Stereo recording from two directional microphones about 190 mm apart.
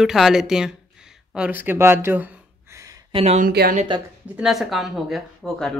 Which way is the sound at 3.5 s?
55° right (ahead or behind).